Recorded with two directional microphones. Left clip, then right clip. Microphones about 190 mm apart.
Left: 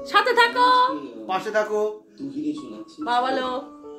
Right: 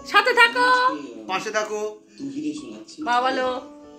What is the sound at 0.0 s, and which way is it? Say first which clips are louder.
Speech: right 2 dB; 15° right (ahead or behind).